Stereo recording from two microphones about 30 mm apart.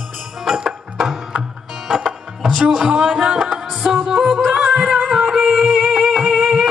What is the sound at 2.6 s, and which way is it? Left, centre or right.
Music, right.